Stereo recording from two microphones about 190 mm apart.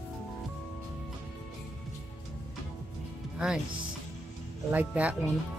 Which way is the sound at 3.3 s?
5° right (ahead or behind).